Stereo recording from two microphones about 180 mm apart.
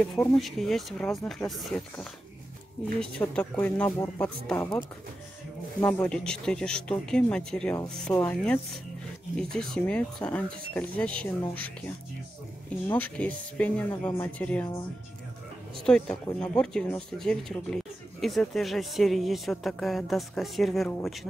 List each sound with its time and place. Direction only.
0.0 s speech: 5° left (ahead or behind)
5.8 s speech: 10° left (ahead or behind)
12.8 s speech: 10° left (ahead or behind)
15.8 s speech: 5° left (ahead or behind)